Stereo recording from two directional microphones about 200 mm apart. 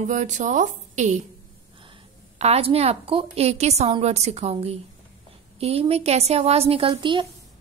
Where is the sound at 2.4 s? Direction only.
30° right (ahead or behind).